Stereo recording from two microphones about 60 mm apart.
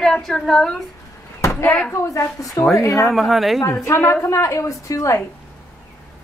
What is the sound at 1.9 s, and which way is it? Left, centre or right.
Speech, left.